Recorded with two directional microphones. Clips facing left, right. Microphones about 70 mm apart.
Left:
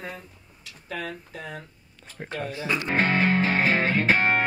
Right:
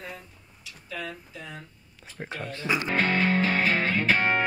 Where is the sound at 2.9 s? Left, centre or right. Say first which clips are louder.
Left 3 dB; left.